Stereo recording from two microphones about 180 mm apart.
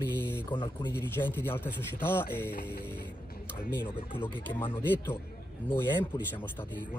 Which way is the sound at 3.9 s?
30° left (ahead or behind).